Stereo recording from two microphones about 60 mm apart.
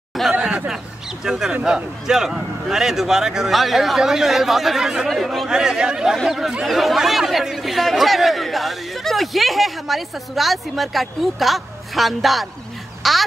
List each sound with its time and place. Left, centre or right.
0.3 s chatter: centre
1.2 s speech: centre
5.5 s speech: centre
13.0 s a sound: centre